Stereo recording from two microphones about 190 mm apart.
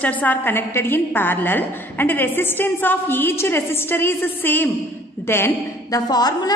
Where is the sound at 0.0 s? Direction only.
10° left (ahead or behind).